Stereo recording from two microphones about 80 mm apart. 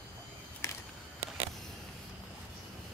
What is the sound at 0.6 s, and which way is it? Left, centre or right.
Walk, left.